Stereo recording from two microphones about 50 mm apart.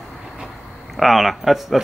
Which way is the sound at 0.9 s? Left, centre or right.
Centre.